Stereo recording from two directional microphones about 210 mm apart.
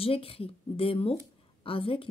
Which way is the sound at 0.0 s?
25° left (ahead or behind).